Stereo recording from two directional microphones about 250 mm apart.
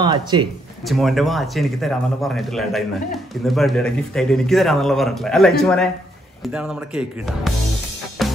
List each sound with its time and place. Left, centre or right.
0.0 s speech: centre
0.8 s speech: centre
8.2 s music: centre